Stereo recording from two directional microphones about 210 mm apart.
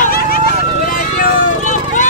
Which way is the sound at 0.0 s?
45° left (ahead or behind).